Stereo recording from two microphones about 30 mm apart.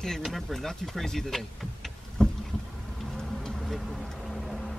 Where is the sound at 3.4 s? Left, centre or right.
Centre.